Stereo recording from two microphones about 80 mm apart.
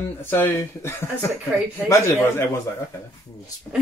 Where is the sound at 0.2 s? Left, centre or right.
Left.